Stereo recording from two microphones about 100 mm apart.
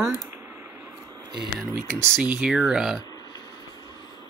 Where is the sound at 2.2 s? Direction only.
15° right (ahead or behind).